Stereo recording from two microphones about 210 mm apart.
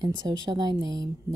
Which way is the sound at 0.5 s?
20° right (ahead or behind).